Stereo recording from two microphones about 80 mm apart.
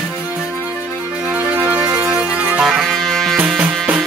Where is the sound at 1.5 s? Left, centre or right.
Centre.